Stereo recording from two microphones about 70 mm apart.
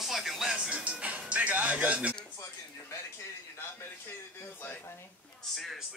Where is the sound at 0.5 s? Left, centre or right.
Centre.